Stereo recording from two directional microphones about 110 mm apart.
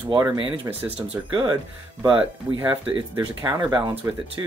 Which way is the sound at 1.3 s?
45° right (ahead or behind).